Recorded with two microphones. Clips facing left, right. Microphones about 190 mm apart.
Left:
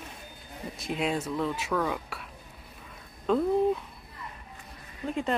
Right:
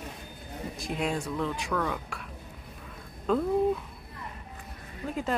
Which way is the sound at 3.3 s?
Centre (ahead or behind).